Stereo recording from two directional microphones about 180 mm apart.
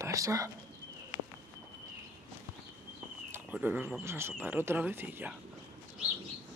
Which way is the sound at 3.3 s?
10° right (ahead or behind).